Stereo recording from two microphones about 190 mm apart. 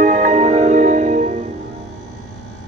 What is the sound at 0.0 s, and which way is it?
Music, 40° right (ahead or behind).